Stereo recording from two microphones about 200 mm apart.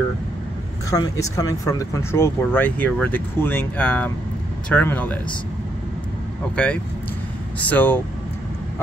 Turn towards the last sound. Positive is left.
turn(degrees=10)  # may be behind; listen again after turning